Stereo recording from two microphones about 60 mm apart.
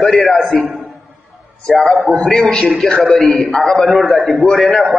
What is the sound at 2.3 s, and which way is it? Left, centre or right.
Speech, left.